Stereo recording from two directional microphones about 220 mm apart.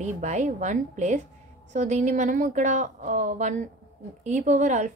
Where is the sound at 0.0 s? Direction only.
30° right (ahead or behind).